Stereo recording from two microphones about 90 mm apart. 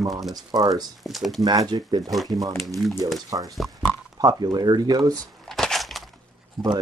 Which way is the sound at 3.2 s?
40° right (ahead or behind).